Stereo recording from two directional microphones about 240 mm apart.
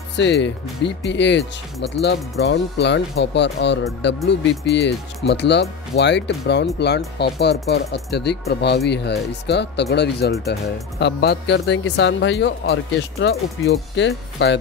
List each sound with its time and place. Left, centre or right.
0.1 s speech: left